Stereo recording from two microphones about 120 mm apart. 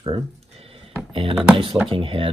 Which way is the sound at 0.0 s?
55° right (ahead or behind).